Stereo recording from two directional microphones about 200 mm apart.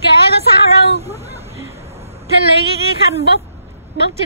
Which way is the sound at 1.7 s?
30° right (ahead or behind).